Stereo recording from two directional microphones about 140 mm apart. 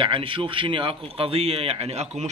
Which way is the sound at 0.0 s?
40° right (ahead or behind).